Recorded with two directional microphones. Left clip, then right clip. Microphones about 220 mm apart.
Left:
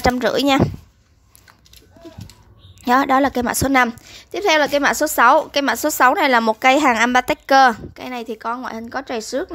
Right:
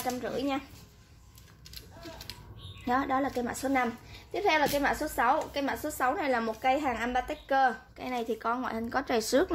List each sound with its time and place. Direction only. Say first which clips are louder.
0.2 s speech: left 16 dB; 45° left (ahead or behind)
2.8 s a woman's voice: left 14 dB; 30° left (ahead or behind)
8.0 s speech: left 6 dB; 20° left (ahead or behind)